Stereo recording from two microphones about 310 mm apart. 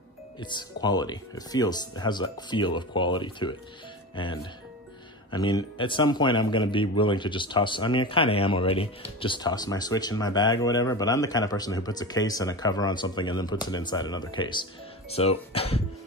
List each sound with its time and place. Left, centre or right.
0.4 s a man's voice: centre